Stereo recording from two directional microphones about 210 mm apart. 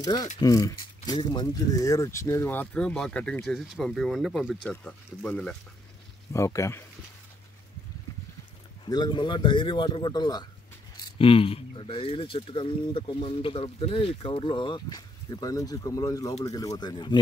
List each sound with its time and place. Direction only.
0.0 s speech: 20° left (ahead or behind)
8.8 s speech: 20° left (ahead or behind)